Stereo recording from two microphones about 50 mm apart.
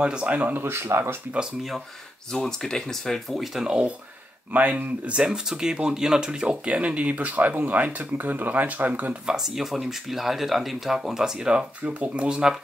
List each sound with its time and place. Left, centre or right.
0.0 s speech: right
0.6 s speech: right
1.4 s speech: centre
2.3 s speech: centre
3.6 s speech: centre
4.5 s speech: right; by 6.7 s centre
6.7 s speech: right
9.2 s speech: centre